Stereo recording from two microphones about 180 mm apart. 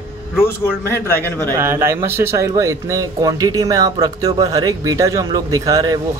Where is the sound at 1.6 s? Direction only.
15° right (ahead or behind).